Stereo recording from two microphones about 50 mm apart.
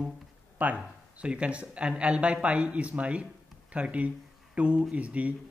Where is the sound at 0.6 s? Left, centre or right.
Right.